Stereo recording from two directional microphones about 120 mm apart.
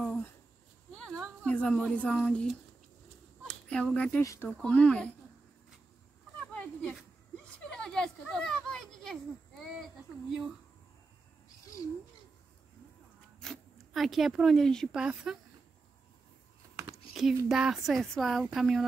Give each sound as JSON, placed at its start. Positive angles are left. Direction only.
{"t": 0.0, "sound": "a sound", "side_deg": 10}
{"t": 1.4, "sound": "speech", "side_deg": 10}
{"t": 3.4, "sound": "speech", "side_deg": 10}
{"t": 4.2, "sound": "speech", "side_deg": 25}
{"t": 4.5, "sound": "speech", "side_deg": 5}
{"t": 6.5, "sound": "a sound", "side_deg": 10}
{"t": 7.5, "sound": "children playing", "side_deg": 5}
{"t": 13.4, "sound": "speech", "side_deg": 0}
{"t": 15.0, "sound": "speech", "side_deg": -10}
{"t": 16.9, "sound": "a sound", "side_deg": 0}
{"t": 17.5, "sound": "speech", "side_deg": -5}